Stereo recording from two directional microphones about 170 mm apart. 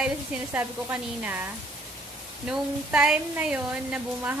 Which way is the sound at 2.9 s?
5° right (ahead or behind).